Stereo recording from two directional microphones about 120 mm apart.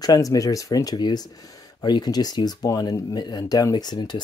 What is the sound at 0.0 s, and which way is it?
Speech, 30° left (ahead or behind).